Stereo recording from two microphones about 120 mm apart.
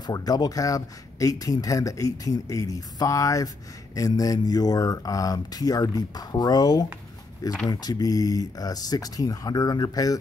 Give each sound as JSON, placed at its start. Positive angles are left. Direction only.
{"t": 0.0, "sound": "speech", "side_deg": 30}